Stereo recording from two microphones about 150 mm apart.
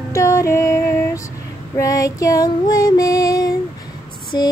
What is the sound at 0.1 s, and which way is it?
Female singing, 20° left (ahead or behind).